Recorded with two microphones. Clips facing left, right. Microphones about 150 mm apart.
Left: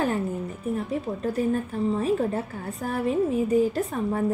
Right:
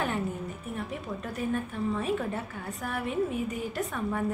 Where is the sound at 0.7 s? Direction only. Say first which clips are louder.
Left 5 dB; 30° left (ahead or behind).